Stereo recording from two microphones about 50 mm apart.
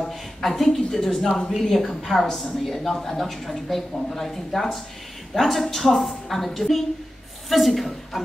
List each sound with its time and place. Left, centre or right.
0.0 s a woman's voice: centre